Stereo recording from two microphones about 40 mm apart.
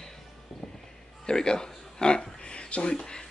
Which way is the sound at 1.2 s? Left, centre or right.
Centre.